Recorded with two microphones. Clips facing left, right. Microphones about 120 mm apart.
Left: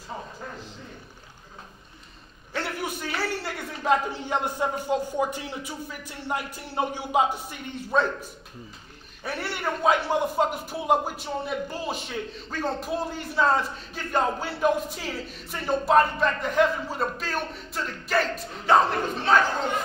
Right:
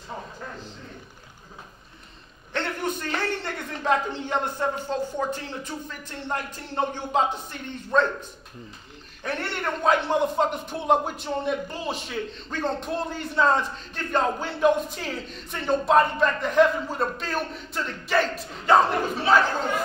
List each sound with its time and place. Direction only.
2.5 s a man's voice: 10° left (ahead or behind)